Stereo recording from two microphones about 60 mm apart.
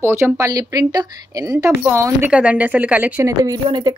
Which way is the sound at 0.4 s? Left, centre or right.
Right.